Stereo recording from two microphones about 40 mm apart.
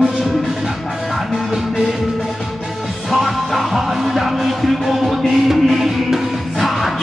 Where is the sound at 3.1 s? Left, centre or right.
Centre.